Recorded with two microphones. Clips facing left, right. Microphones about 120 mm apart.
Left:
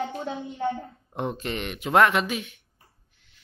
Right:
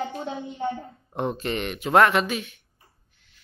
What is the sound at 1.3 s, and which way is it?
Speech, 10° left (ahead or behind).